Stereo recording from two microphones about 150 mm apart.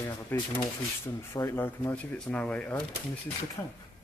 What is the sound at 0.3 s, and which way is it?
Speech, 10° left (ahead or behind).